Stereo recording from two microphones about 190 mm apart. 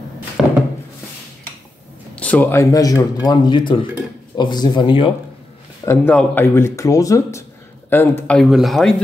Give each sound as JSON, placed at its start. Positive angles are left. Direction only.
{"t": 0.4, "sound": "a sound", "side_deg": 0}
{"t": 2.1, "sound": "speech", "side_deg": 5}
{"t": 5.9, "sound": "speech", "side_deg": 10}